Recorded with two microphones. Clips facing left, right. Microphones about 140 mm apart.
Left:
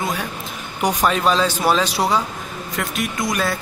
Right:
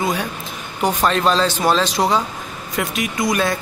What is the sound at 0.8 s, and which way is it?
Speech, 10° left (ahead or behind).